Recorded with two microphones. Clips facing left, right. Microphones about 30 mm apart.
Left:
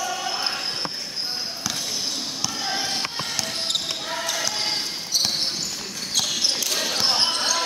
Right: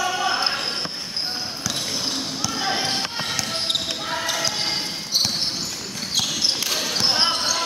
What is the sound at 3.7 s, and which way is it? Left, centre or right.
Basketball bounce, centre.